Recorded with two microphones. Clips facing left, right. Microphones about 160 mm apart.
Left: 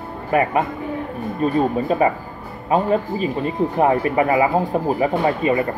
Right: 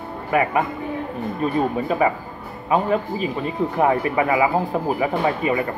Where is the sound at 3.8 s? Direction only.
35° left (ahead or behind).